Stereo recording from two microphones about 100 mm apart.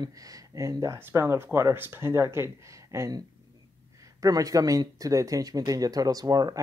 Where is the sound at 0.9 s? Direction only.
20° right (ahead or behind).